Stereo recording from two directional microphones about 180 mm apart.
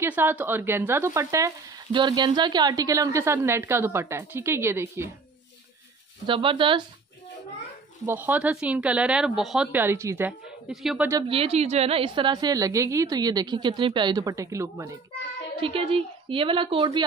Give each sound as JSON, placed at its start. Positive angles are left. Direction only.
{"t": 0.0, "sound": "speech", "side_deg": -10}
{"t": 6.2, "sound": "a woman's voice", "side_deg": -30}
{"t": 8.0, "sound": "speech", "side_deg": -10}
{"t": 10.7, "sound": "speech", "side_deg": 0}
{"t": 11.2, "sound": "a woman's voice", "side_deg": -30}
{"t": 15.6, "sound": "a woman's voice", "side_deg": -30}